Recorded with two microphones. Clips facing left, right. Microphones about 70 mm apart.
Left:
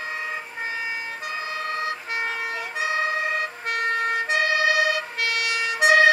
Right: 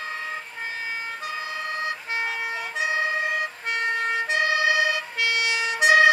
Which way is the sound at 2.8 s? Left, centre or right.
Right.